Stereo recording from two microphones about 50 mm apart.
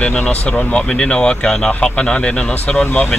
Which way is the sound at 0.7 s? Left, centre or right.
Centre.